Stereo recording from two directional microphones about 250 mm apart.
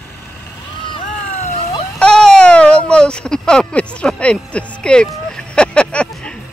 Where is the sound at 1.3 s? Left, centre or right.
Left.